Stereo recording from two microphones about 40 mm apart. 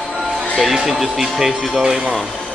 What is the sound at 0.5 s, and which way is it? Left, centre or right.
Speech, centre.